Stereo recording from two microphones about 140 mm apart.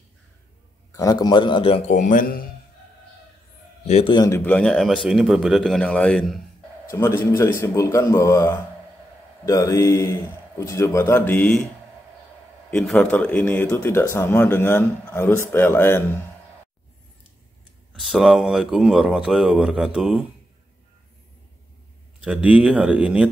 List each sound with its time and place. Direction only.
0.9 s a man's voice: 25° left (ahead or behind)
2.0 s a man's voice: 70° left (ahead or behind)
3.8 s a man's voice: 50° left (ahead or behind)
4.3 s speech: 15° left (ahead or behind)
6.9 s a man's voice: 20° left (ahead or behind)
12.8 s speech: 5° left (ahead or behind)
17.9 s speech: centre (ahead or behind)
22.2 s speech: 10° right (ahead or behind)